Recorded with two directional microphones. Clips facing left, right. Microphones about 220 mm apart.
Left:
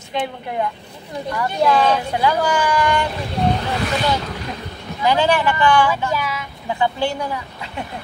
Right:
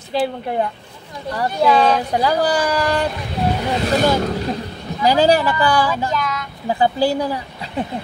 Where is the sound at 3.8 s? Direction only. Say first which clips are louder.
Right 7 dB; 45° right (ahead or behind).